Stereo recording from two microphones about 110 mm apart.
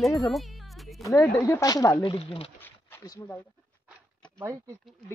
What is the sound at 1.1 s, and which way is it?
Speech, 25° left (ahead or behind).